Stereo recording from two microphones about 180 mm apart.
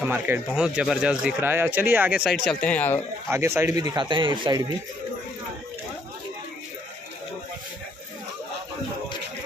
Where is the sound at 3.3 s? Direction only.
15° right (ahead or behind).